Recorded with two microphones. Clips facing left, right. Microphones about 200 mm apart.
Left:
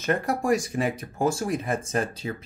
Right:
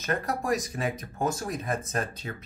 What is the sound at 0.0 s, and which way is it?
Speech, 30° left (ahead or behind).